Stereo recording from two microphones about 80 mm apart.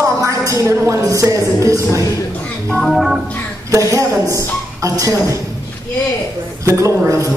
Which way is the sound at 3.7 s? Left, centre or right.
Right.